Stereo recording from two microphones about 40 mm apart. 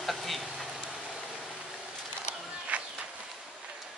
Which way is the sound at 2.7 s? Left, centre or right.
Right.